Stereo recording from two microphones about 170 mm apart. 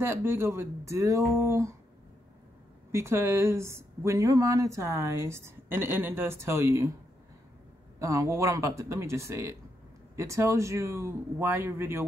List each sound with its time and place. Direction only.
0.0 s speech: 15° right (ahead or behind)
2.9 s speech: 15° right (ahead or behind)
8.0 s speech: 20° right (ahead or behind)